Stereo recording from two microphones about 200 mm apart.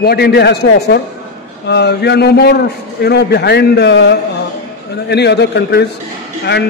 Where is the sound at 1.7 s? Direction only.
55° left (ahead or behind).